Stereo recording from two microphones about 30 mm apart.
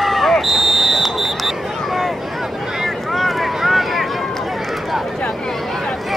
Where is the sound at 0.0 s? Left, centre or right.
Centre.